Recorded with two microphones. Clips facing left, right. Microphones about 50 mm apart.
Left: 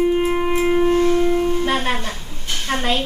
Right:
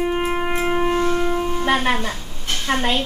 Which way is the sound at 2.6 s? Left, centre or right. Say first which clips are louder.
Right 1 dB; centre.